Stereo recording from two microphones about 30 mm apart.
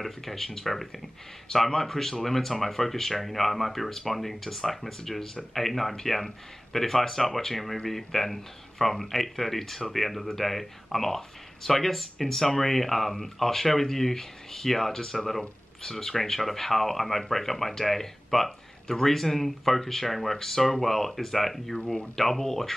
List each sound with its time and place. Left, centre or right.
0.0 s speech: centre
21.7 s speech: left
22.1 s speech: centre